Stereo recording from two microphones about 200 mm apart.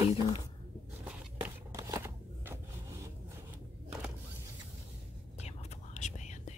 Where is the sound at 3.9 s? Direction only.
5° right (ahead or behind).